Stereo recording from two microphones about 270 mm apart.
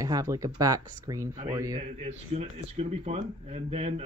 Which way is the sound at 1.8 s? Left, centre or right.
Right.